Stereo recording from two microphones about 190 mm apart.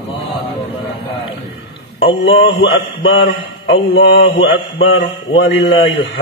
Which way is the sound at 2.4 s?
70° left (ahead or behind).